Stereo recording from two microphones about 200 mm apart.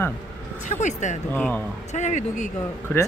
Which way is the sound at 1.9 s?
35° left (ahead or behind).